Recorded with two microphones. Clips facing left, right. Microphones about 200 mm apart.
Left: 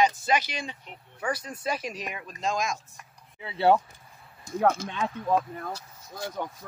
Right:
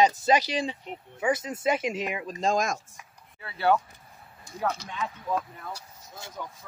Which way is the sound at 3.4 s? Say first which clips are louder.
Left 3 dB; 25° left (ahead or behind).